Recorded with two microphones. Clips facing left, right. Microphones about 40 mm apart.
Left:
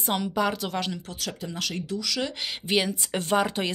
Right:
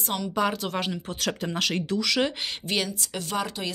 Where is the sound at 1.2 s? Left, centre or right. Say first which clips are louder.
Right 6 dB; right.